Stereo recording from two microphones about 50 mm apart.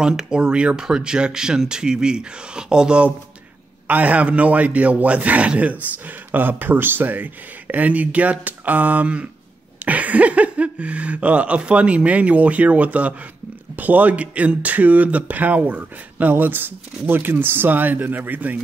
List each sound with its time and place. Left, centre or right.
0.0 s speech: centre
3.8 s speech: right
6.3 s speech: right